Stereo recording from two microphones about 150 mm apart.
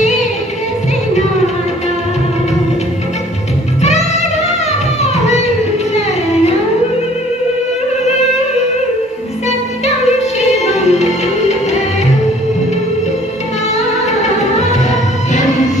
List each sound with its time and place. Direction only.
10.6 s music: 50° left (ahead or behind)
14.2 s music: 50° left (ahead or behind)